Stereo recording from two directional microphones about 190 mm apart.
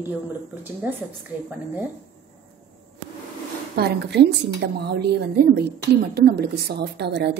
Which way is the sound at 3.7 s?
60° right (ahead or behind).